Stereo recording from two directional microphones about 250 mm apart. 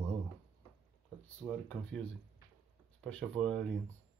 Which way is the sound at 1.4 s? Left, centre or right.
Centre.